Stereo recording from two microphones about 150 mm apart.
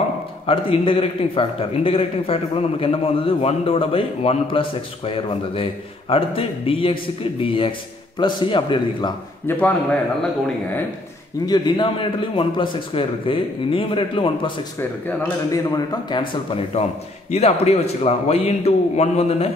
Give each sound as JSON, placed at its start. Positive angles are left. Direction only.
{"t": 0.5, "sound": "a man's voice", "side_deg": 40}
{"t": 9.5, "sound": "a man's voice", "side_deg": 10}
{"t": 11.4, "sound": "a man's voice", "side_deg": 30}
{"t": 14.8, "sound": "a man's voice", "side_deg": 20}
{"t": 17.3, "sound": "a man's voice", "side_deg": 45}